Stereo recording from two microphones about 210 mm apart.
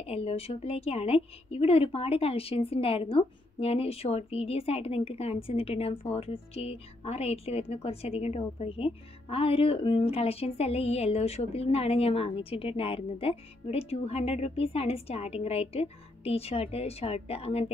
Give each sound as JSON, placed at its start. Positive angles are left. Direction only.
{"t": 0.0, "sound": "a woman's voice", "side_deg": 30}